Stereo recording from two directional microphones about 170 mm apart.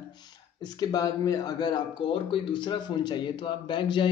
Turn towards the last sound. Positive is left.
turn(degrees=30)  # may be behind; listen again after turning